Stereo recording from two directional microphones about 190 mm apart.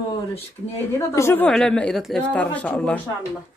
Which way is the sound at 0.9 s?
15° left (ahead or behind).